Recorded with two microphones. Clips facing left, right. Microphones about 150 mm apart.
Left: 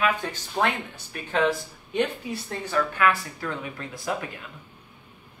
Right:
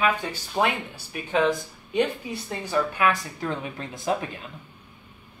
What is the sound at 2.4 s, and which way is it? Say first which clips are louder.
Speech: right 1 dB; 15° right (ahead or behind).